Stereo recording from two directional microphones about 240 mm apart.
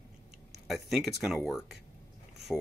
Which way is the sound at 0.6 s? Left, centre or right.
Centre.